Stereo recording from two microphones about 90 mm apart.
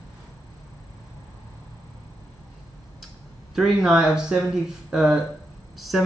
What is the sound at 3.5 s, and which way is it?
A man's voice, 5° right (ahead or behind).